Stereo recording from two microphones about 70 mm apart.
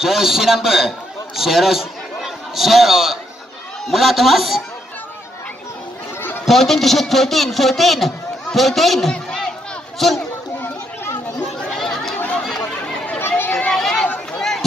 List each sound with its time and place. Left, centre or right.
0.0 s a man's voice: centre
6.4 s a man's voice: centre
9.1 s crowd: centre
9.9 s speech: centre
11.7 s chatter: centre
12.2 s chatter: centre
12.4 s chatter: centre
13.4 s a sound: left
13.7 s chatter: centre
14.3 s a sound: centre